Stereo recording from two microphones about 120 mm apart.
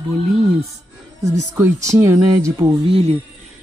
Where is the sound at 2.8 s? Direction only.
55° right (ahead or behind).